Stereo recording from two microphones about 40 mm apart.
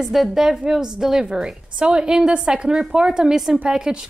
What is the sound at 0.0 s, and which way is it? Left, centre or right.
Speech, centre.